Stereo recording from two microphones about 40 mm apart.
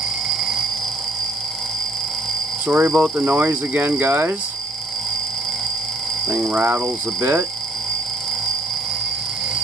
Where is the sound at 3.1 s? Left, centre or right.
Right.